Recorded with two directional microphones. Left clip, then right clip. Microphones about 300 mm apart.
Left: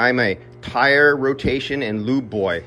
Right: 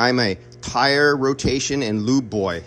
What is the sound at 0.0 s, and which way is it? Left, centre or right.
Speech, centre.